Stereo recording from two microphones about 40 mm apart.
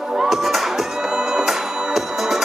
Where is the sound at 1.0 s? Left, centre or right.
Centre.